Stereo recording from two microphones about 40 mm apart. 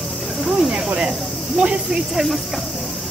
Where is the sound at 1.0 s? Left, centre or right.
Right.